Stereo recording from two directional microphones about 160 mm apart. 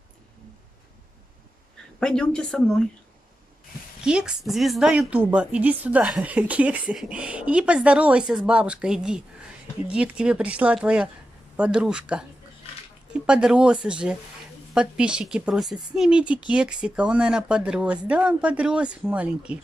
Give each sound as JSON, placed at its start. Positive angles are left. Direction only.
{"t": 2.0, "sound": "a woman's voice", "side_deg": 5}
{"t": 4.0, "sound": "a woman's voice", "side_deg": -5}